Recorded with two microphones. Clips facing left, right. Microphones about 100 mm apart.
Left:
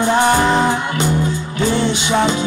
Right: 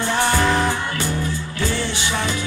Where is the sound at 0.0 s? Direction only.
15° left (ahead or behind).